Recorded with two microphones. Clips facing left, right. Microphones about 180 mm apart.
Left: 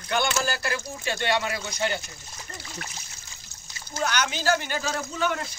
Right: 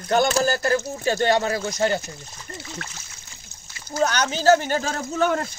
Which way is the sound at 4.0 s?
40° right (ahead or behind).